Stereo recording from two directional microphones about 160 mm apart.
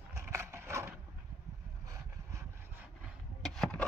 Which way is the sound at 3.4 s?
Centre (ahead or behind).